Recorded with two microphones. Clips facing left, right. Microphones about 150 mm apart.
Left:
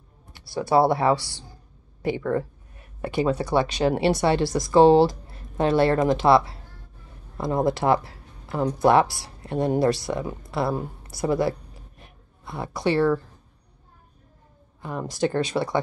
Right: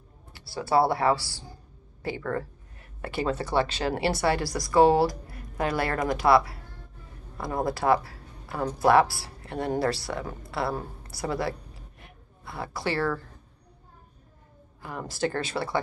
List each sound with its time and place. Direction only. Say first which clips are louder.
0.3 s speech: left 4 dB; 20° left (ahead or behind)
12.0 s a sound: left 1 dB; 20° left (ahead or behind)
14.8 s speech: left 4 dB; 20° left (ahead or behind)